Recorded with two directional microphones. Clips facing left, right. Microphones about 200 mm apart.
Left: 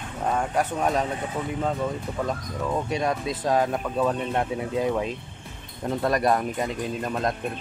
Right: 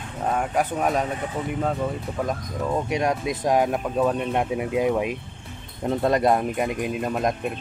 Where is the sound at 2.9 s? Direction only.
15° right (ahead or behind).